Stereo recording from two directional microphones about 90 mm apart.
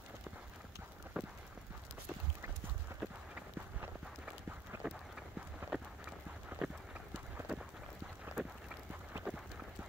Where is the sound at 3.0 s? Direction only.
20° right (ahead or behind).